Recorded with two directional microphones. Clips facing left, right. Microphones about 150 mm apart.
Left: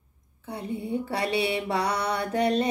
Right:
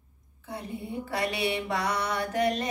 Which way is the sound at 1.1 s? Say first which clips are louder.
Left 1 dB; 30° left (ahead or behind).